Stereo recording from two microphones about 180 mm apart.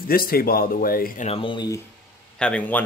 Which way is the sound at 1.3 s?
30° left (ahead or behind).